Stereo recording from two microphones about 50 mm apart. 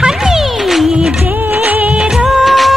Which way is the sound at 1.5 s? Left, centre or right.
Right.